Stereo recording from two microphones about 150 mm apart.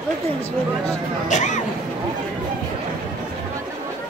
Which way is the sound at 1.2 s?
55° left (ahead or behind).